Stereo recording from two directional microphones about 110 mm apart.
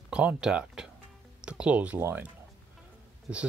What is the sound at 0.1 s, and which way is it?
Speech, 10° right (ahead or behind).